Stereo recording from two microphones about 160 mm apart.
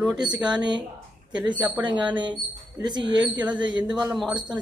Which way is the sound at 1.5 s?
10° right (ahead or behind).